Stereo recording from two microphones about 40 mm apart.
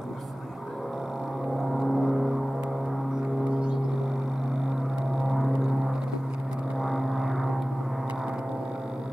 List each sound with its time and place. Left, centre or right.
1.9 s vehicle: centre
3.4 s gong: right
5.1 s a sound: centre
6.8 s vehicle: centre